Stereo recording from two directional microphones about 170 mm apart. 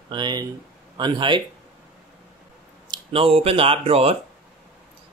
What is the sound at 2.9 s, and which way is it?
Speech, 35° right (ahead or behind).